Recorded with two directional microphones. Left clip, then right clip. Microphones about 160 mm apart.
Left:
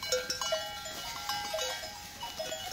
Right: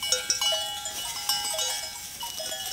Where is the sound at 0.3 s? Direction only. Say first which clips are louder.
Right 8 dB; 45° left (ahead or behind).